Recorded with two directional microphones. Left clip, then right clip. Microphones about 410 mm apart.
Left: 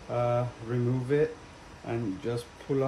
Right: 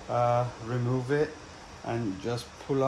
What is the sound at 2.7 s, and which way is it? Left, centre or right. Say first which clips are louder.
Speech: right 1 dB; right.